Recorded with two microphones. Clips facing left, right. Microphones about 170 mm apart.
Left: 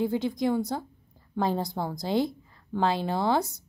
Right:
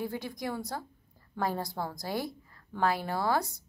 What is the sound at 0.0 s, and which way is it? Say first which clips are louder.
A woman's voice: left 9 dB; 20° left (ahead or behind).